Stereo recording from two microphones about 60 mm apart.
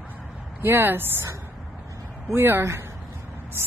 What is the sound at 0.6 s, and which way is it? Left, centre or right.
Speech, right.